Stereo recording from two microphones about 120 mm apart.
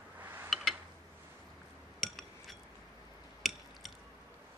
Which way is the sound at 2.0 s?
Centre (ahead or behind).